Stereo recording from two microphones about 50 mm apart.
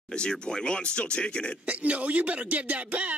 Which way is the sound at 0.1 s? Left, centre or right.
Centre.